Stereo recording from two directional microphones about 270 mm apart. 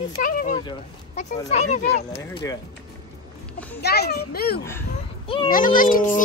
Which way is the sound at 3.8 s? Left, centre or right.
Left.